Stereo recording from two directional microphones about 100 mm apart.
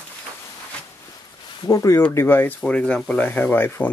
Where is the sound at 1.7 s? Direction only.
30° left (ahead or behind).